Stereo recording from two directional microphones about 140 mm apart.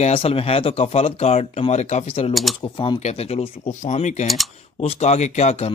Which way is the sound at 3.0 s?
50° left (ahead or behind).